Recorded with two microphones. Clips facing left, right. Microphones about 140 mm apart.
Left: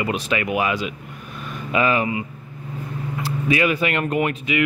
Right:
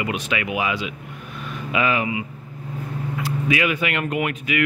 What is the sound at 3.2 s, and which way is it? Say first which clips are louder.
Speech: left 2 dB; 35° left (ahead or behind).